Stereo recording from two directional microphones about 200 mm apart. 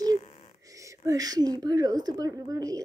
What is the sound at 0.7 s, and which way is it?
A child's voice, 15° right (ahead or behind).